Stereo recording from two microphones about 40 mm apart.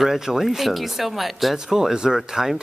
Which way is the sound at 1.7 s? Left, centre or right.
Centre.